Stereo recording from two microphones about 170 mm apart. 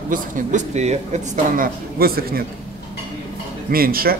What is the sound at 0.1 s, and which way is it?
Speech, 45° right (ahead or behind).